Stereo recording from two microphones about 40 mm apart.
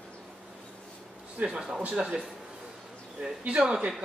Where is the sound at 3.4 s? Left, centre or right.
Right.